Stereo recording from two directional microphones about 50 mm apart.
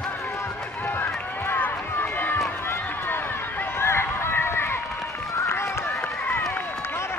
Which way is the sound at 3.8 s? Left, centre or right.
Left.